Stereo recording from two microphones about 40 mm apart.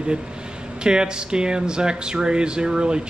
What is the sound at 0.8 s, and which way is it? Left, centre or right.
Speech, right.